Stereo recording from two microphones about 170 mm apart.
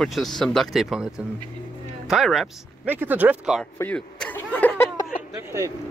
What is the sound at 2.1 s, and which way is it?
Speech, centre (ahead or behind).